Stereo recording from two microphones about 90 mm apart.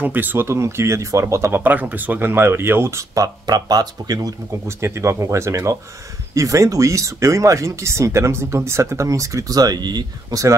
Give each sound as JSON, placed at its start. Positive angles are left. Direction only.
{"t": 0.0, "sound": "speech", "side_deg": -20}
{"t": 3.4, "sound": "speech", "side_deg": -45}
{"t": 4.6, "sound": "speech", "side_deg": -30}